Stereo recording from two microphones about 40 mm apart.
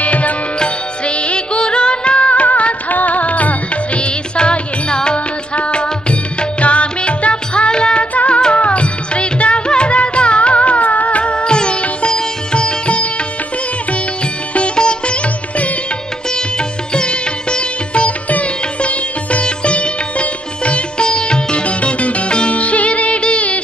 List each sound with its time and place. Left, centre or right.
0.0 s music: left
8.1 s music: left
14.5 s sitar: left
16.5 s sitar: left